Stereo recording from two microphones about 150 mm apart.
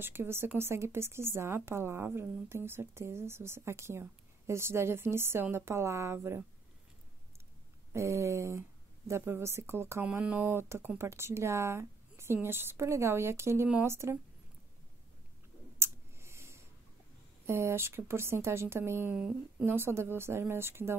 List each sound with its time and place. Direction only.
0.0 s speech: 15° right (ahead or behind)
7.9 s speech: 20° right (ahead or behind)
15.8 s a sound: 15° right (ahead or behind)
17.5 s speech: 15° right (ahead or behind)